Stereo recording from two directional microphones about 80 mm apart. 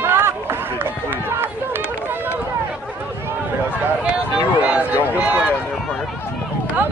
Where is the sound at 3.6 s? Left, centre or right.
Centre.